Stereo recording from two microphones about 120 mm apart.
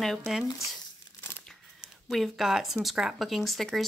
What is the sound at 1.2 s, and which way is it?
Crumpling, 15° left (ahead or behind).